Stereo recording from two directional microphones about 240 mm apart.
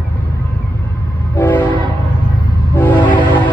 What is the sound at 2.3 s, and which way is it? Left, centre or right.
Train, centre.